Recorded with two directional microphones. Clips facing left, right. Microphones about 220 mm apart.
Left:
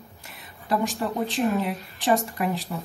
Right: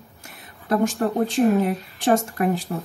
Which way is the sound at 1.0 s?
45° right (ahead or behind).